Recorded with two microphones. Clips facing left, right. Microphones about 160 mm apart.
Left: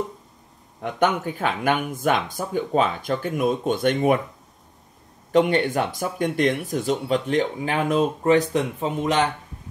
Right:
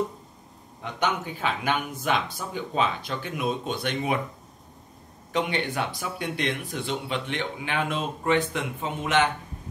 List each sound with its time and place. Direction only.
0.8 s speech: 50° left (ahead or behind)
5.3 s speech: 45° left (ahead or behind)